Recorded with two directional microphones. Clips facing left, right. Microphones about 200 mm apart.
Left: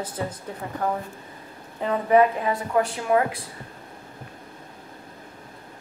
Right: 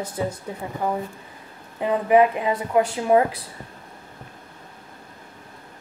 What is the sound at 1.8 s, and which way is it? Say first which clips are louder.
A woman's voice: right 1 dB; 15° right (ahead or behind).